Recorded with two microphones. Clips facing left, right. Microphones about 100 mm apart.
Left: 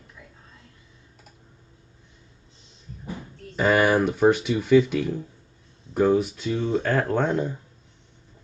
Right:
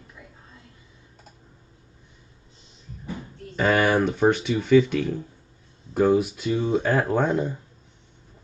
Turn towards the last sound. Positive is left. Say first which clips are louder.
# right 1 dB
turn(degrees=-5)  # may be behind; listen again after turning